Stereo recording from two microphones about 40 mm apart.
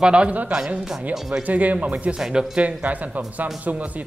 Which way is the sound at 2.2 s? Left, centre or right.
Centre.